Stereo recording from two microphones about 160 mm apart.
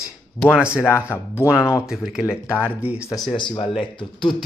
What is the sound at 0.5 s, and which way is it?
Speech, 5° right (ahead or behind).